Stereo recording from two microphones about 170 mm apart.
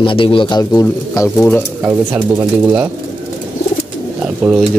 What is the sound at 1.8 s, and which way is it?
Speech, 10° right (ahead or behind).